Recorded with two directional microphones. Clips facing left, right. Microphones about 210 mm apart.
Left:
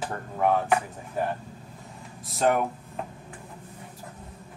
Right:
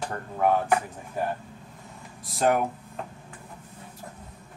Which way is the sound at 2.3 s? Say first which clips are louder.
Even; centre (ahead or behind).